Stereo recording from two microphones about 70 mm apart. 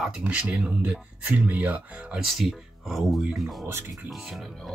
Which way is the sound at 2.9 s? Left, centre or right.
Centre.